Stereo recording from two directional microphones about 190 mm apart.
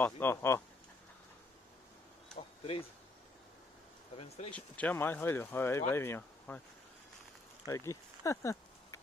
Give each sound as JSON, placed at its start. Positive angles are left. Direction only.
{"t": 0.0, "sound": "speech", "side_deg": 10}
{"t": 2.6, "sound": "speech", "side_deg": 30}
{"t": 4.5, "sound": "speech", "side_deg": 5}
{"t": 7.6, "sound": "a sound", "side_deg": 15}